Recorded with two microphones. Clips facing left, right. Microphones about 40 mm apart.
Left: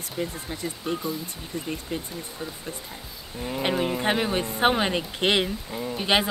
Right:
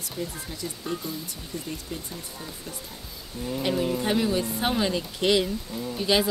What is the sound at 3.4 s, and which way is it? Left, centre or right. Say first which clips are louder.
Speech: left 1 dB; left.